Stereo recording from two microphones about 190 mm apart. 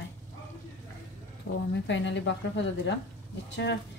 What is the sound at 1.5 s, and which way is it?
A woman's voice, 70° left (ahead or behind).